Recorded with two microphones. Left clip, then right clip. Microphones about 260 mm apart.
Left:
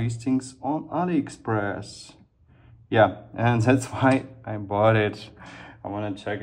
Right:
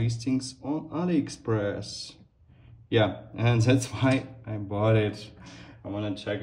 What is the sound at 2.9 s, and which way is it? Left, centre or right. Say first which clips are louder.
Speech: left 6 dB; centre.